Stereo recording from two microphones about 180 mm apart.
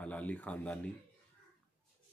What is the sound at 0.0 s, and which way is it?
Speech, 10° left (ahead or behind).